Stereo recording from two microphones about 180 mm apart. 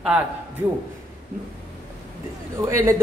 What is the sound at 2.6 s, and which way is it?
Speech, 15° right (ahead or behind).